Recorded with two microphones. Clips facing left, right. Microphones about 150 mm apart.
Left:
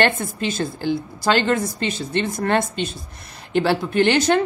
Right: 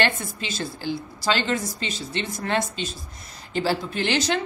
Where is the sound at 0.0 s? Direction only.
50° left (ahead or behind).